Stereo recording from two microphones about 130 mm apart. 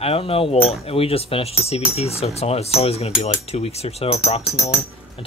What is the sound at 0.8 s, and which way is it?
Cutlery, 50° left (ahead or behind).